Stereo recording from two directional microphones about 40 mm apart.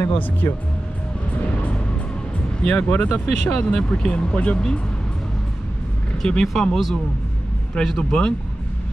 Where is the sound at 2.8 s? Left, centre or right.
Left.